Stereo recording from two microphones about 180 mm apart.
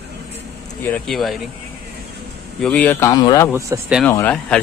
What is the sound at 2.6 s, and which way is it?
Speech, 10° left (ahead or behind).